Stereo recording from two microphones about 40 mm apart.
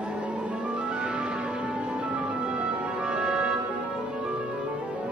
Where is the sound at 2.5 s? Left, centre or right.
Right.